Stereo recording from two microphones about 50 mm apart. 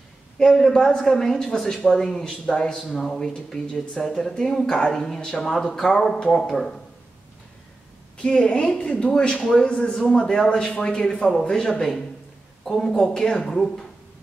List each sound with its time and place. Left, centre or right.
0.4 s speech: centre
2.7 s speech: centre
8.3 s speech: centre
8.7 s speech: left; by 13.8 s centre